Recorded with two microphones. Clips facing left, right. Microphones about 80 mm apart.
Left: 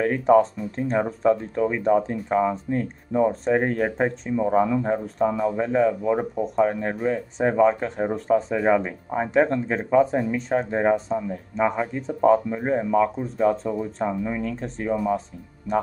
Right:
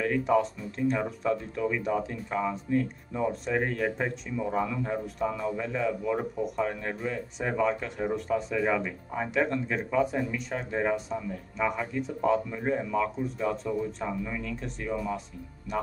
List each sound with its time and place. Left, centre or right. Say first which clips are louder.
0.0 s speech: left 7 dB; left